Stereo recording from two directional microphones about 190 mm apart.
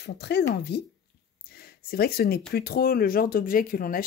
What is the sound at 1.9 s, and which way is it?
Speech, 55° left (ahead or behind).